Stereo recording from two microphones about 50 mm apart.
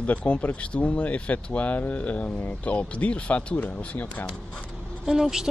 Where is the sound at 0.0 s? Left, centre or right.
Left.